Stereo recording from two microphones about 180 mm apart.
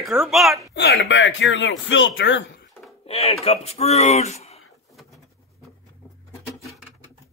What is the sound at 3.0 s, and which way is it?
Speech, 35° left (ahead or behind).